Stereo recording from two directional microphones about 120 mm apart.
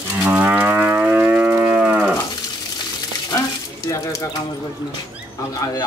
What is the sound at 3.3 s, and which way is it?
Water tap, 30° left (ahead or behind).